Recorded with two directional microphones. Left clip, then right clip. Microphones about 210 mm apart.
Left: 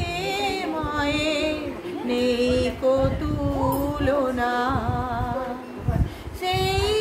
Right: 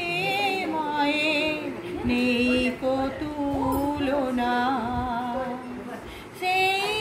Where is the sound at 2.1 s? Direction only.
20° left (ahead or behind).